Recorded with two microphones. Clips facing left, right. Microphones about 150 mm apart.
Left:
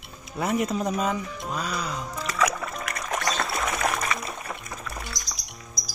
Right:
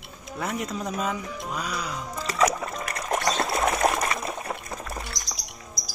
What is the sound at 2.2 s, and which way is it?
Music, 35° right (ahead or behind).